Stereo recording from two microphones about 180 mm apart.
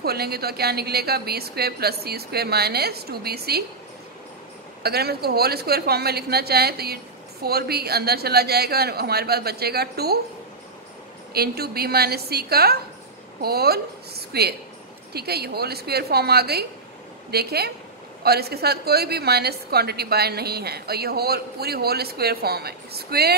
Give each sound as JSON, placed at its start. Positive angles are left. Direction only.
{"t": 0.0, "sound": "a woman's voice", "side_deg": -60}
{"t": 4.8, "sound": "a woman's voice", "side_deg": -60}
{"t": 11.3, "sound": "a woman's voice", "side_deg": -60}